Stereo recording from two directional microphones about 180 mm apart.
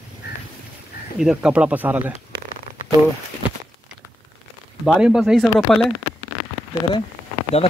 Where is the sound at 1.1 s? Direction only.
5° right (ahead or behind).